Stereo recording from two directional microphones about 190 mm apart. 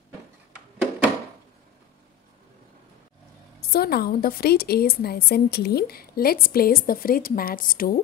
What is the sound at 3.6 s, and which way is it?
A woman's voice, 55° left (ahead or behind).